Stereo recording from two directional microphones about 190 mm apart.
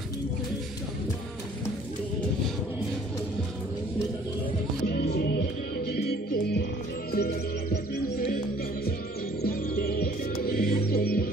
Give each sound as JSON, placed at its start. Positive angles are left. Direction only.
{"t": 5.1, "sound": "music", "side_deg": 60}
{"t": 9.4, "sound": "music", "side_deg": 50}